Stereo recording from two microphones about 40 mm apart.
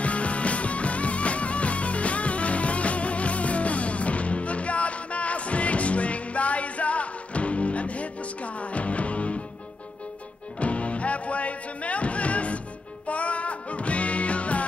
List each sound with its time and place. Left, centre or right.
0.0 s music: left
10.6 s music: left